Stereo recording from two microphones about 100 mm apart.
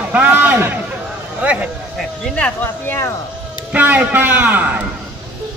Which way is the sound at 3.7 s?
15° right (ahead or behind).